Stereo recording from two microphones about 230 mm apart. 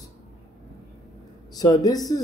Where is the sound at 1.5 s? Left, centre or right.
Centre.